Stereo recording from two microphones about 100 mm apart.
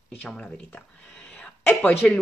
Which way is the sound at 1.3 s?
10° left (ahead or behind).